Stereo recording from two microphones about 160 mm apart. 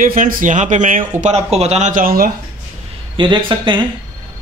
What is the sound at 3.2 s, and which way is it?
Speech, 30° right (ahead or behind).